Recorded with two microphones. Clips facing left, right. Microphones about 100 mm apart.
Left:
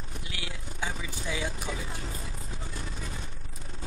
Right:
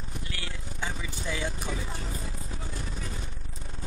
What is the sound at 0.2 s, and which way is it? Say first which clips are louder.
Vehicle: right 1 dB; 10° left (ahead or behind).